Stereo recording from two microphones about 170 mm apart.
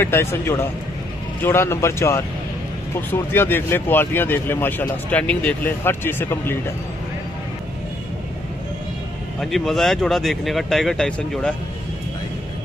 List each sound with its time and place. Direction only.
0.0 s speech: 15° left (ahead or behind)
9.4 s speech: centre (ahead or behind)